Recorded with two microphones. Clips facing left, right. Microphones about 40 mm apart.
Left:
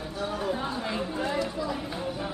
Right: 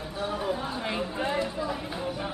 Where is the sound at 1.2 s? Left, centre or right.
Right.